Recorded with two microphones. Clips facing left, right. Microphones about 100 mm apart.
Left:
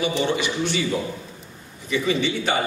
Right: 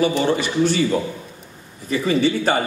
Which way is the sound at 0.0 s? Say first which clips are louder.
Right 4 dB; 40° right (ahead or behind).